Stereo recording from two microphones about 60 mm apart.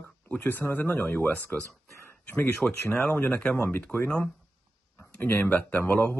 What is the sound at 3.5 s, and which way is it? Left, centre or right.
Speech, left.